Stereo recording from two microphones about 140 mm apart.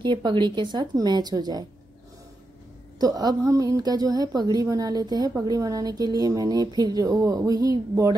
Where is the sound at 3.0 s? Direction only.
25° right (ahead or behind).